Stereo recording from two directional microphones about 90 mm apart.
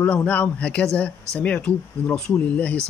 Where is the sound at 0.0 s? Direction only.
15° left (ahead or behind).